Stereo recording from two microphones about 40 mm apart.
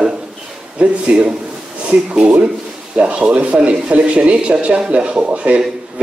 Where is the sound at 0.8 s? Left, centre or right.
Right.